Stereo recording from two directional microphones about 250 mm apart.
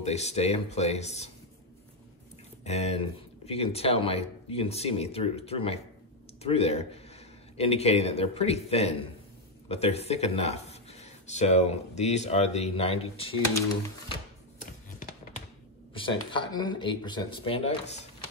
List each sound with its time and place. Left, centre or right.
0.0 s speech: left
2.6 s speech: left
15.9 s speech: centre